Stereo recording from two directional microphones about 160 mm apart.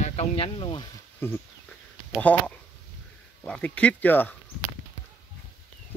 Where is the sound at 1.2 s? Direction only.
15° left (ahead or behind).